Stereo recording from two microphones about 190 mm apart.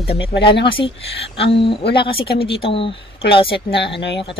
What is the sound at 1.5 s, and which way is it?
Speech, 60° left (ahead or behind).